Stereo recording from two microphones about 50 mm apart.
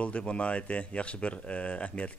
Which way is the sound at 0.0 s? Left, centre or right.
Left.